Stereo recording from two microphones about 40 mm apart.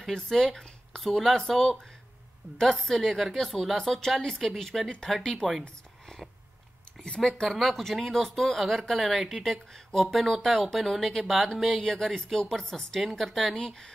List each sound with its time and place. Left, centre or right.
0.1 s speech: centre
5.4 s speech: left
7.2 s speech: centre
7.4 s speech: centre
11.8 s speech: centre